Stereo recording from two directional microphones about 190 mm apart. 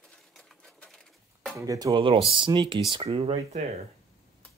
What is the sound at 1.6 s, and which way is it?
Speech, 15° right (ahead or behind).